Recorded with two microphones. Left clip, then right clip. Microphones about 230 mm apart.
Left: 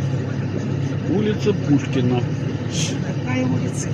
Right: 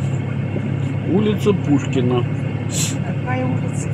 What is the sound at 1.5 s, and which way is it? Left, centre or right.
Speech, right.